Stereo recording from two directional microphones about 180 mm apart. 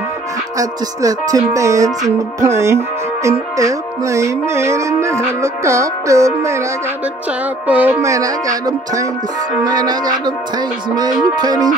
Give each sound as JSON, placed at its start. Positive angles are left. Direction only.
{"t": 0.6, "sound": "music", "side_deg": -20}
{"t": 7.6, "sound": "music", "side_deg": -10}
{"t": 9.7, "sound": "speech", "side_deg": -20}
{"t": 11.3, "sound": "speech", "side_deg": -20}